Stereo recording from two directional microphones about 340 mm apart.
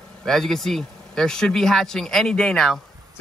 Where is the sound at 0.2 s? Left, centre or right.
Centre.